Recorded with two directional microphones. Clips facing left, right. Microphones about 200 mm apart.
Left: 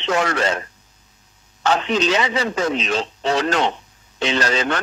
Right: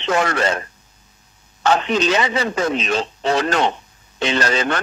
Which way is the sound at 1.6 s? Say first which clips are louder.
Right 1 dB; 50° right (ahead or behind).